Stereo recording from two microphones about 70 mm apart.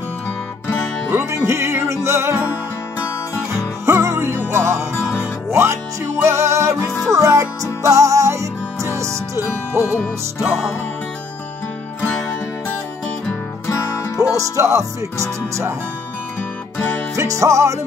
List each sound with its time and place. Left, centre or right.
1.1 s music: right
3.5 s music: right
14.3 s music: right
16.7 s music: centre
17.1 s music: right